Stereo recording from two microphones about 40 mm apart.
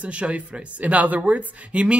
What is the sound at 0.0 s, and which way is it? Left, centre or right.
Speech, right.